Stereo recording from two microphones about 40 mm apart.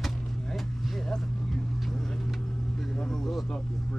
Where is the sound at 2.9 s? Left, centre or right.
Centre.